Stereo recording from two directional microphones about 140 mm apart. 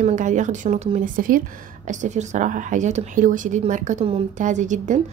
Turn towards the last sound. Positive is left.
turn(degrees=-60)  # may be behind; listen again after turning